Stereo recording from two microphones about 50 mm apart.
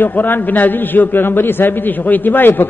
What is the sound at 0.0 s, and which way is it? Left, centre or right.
A man's voice, left.